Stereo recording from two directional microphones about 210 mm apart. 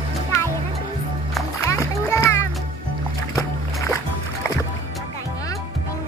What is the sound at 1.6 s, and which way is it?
Music, 15° left (ahead or behind).